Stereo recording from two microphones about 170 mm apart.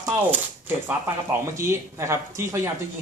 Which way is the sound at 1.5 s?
15° right (ahead or behind).